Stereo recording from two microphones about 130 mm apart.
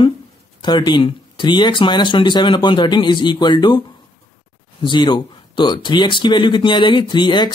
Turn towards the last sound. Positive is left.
turn(degrees=35)  # may be behind; listen again after turning